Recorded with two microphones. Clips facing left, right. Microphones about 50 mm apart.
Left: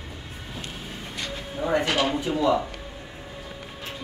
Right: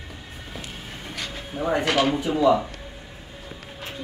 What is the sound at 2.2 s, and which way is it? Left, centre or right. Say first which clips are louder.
Speech: right 3 dB; right.